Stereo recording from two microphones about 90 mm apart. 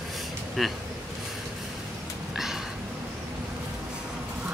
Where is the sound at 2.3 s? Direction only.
5° right (ahead or behind).